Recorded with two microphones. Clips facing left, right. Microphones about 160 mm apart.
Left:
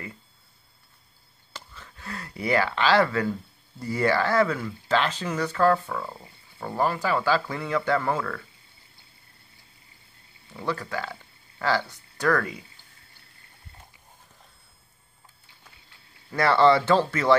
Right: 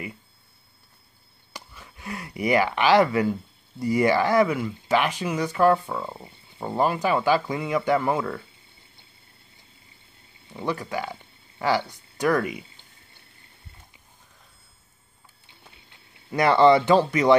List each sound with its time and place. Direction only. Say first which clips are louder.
1.5 s speech: right 1 dB; 15° right (ahead or behind)
10.5 s speech: right 2 dB; 20° right (ahead or behind)
15.4 s a sound: right 6 dB; 20° right (ahead or behind)